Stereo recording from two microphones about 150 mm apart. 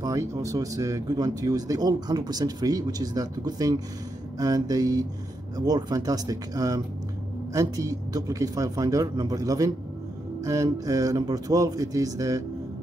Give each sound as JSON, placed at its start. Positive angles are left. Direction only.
{"t": 0.0, "sound": "speech", "side_deg": -20}